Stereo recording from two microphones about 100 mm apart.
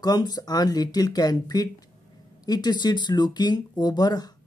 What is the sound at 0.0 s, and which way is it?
Speech, 40° left (ahead or behind).